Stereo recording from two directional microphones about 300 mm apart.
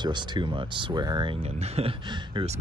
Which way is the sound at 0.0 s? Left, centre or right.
Centre.